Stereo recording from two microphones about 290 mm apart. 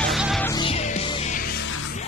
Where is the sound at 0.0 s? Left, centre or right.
Centre.